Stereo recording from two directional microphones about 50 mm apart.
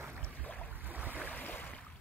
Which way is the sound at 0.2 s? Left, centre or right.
Left.